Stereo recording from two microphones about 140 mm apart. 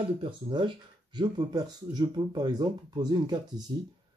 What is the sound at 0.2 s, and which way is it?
Speech, 35° right (ahead or behind).